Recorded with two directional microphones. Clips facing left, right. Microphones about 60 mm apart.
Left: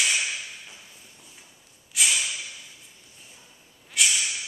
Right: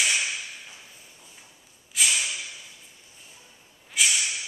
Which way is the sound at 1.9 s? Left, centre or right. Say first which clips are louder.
Even; centre.